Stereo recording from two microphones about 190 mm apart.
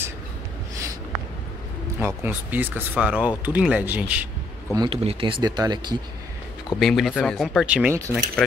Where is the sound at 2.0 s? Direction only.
10° right (ahead or behind).